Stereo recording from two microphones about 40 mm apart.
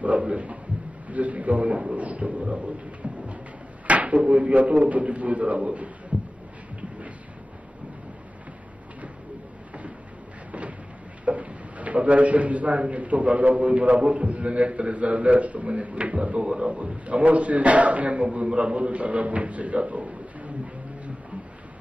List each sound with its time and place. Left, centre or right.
0.2 s a man's voice: right
3.8 s drawer open or close: right
4.3 s a man's voice: right
11.2 s a sound: right
12.7 s a man's voice: right